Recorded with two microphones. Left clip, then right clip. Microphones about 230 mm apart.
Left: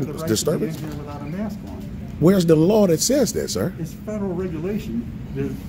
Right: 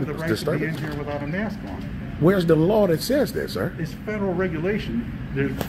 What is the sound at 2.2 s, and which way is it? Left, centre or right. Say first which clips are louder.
Speech: left 2 dB; left.